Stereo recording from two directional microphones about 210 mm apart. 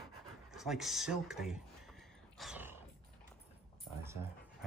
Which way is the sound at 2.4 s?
5° right (ahead or behind).